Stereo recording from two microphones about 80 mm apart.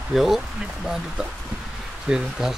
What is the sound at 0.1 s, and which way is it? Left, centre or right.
Speech, centre.